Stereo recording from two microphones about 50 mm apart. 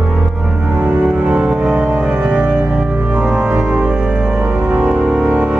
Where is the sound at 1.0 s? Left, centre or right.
Right.